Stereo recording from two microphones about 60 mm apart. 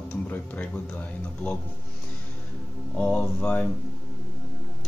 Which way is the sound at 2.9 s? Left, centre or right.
Centre.